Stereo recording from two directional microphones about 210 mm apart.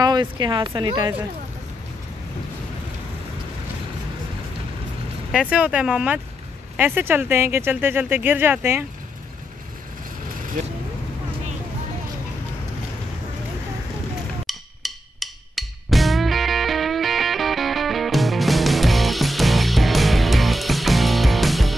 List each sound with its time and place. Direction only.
0.0 s speech: 20° right (ahead or behind)
5.3 s speech: 5° right (ahead or behind)
14.4 s music: centre (ahead or behind)